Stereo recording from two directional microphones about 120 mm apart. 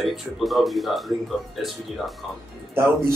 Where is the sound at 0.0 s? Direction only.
Centre (ahead or behind).